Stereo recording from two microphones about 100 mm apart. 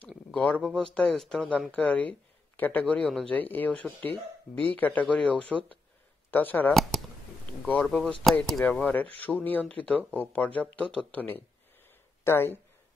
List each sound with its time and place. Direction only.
0.3 s speech: 10° left (ahead or behind)
1.7 s speech: 15° left (ahead or behind)
6.7 s speech: centre (ahead or behind)
8.6 s speech: 15° left (ahead or behind)